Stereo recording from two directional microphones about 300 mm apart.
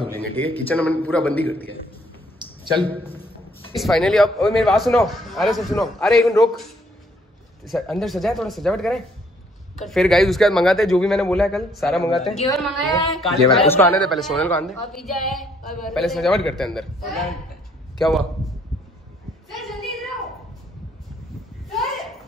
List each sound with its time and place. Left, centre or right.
0.1 s speech: centre
3.7 s speech: centre
7.6 s speech: centre
12.3 s a woman's voice: centre
12.5 s a man's voice: centre
19.7 s a sound: centre
21.6 s a sound: centre